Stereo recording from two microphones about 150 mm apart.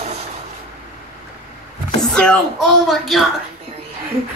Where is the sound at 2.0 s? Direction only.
5° left (ahead or behind).